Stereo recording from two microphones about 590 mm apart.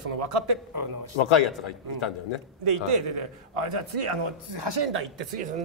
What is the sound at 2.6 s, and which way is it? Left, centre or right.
A man's voice, right.